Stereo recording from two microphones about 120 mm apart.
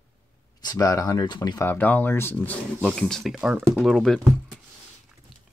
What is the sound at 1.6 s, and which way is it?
Speech, 15° left (ahead or behind).